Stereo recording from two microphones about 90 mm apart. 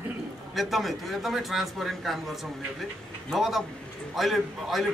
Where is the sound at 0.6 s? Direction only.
Centre (ahead or behind).